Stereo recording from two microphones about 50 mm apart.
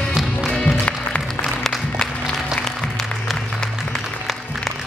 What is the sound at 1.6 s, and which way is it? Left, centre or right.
Music, centre.